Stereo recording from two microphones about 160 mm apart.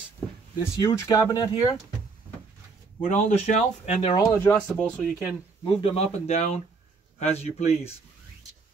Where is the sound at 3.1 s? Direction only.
45° left (ahead or behind).